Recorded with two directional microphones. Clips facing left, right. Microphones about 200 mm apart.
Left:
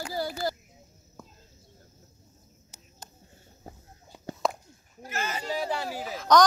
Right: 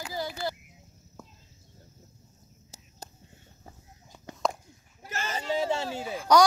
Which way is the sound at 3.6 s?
35° left (ahead or behind).